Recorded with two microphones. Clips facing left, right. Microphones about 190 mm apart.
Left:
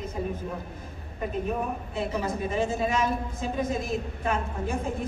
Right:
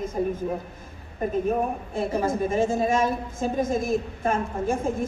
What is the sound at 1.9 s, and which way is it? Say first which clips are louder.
A woman's voice: right 5 dB; 45° right (ahead or behind).